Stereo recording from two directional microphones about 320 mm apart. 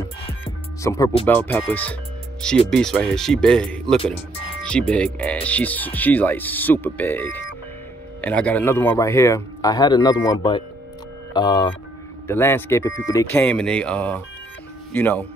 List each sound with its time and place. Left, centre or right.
0.8 s speech: centre
4.0 s speech: centre
4.6 s speech: centre